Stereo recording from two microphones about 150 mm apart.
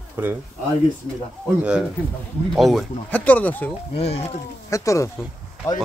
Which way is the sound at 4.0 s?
45° left (ahead or behind).